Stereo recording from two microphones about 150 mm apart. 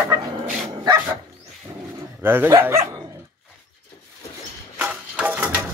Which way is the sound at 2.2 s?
15° right (ahead or behind).